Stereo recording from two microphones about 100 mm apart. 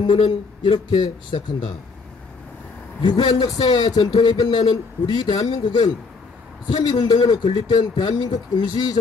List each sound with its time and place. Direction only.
0.0 s speech: 55° left (ahead or behind)
3.0 s speech: 45° left (ahead or behind)